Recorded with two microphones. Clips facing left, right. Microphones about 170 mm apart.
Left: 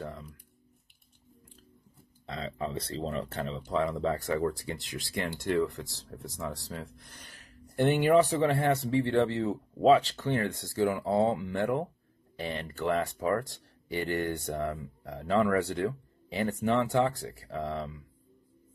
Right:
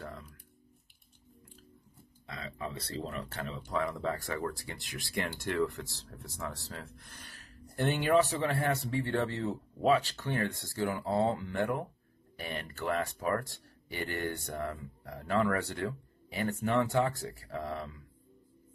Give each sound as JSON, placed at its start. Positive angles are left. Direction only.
{"t": 2.2, "sound": "speech", "side_deg": 30}